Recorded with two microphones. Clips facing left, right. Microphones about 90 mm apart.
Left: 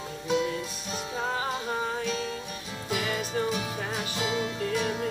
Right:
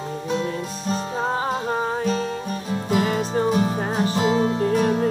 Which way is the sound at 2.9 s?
40° right (ahead or behind).